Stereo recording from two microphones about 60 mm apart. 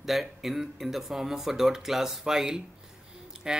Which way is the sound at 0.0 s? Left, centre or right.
Centre.